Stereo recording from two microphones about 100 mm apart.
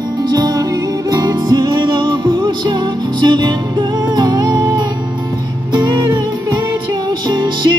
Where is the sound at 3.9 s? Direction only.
35° right (ahead or behind).